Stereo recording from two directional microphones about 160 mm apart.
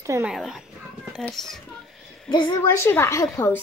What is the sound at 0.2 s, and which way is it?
Speech, 5° right (ahead or behind).